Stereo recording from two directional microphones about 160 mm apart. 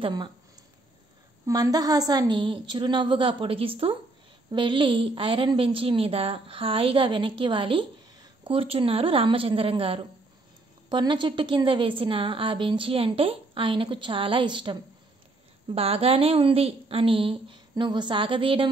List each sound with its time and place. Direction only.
0.0 s speech: 30° right (ahead or behind)
1.4 s a woman's voice: 25° right (ahead or behind)